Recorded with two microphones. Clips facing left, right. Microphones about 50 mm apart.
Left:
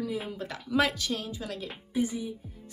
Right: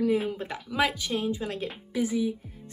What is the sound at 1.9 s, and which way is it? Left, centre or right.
Speech, right.